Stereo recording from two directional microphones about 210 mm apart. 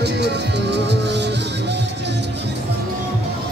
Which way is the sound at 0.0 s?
55° right (ahead or behind).